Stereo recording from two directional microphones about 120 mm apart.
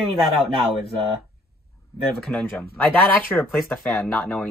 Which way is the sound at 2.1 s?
5° left (ahead or behind).